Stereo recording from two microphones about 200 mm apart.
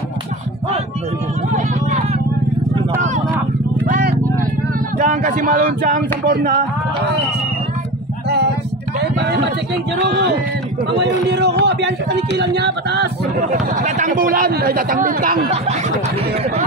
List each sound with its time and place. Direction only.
1.5 s vehicle: 35° right (ahead or behind)
3.8 s vehicle: 45° right (ahead or behind)
4.9 s a sound: 40° right (ahead or behind)
6.2 s a man's voice: 50° right (ahead or behind)
9.0 s a sound: 55° right (ahead or behind)
9.9 s a man's voice: 60° right (ahead or behind)
13.5 s a man's voice: 40° right (ahead or behind)